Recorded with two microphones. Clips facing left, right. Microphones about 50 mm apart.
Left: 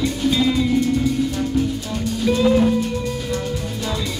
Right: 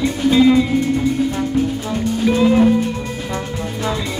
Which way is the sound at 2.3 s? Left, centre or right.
Right.